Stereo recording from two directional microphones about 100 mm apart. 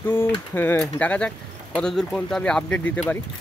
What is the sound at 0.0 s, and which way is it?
Speech, 20° left (ahead or behind).